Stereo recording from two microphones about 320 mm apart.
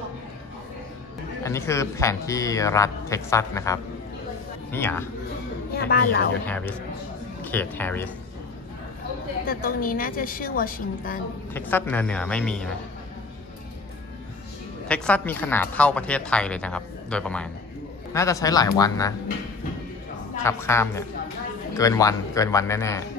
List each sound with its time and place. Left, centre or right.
1.4 s speech: centre
5.8 s a woman's voice: left
6.4 s speech: centre
9.5 s a woman's voice: left
11.5 s speech: centre
14.9 s speech: centre
20.4 s speech: centre